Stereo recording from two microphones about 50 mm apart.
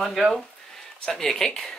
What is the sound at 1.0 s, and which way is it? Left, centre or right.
Speech, centre.